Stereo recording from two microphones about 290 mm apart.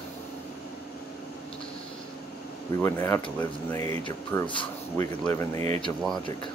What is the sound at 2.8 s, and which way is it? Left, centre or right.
Speech, centre.